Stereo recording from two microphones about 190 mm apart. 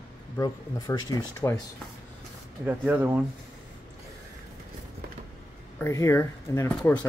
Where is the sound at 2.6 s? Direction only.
10° right (ahead or behind).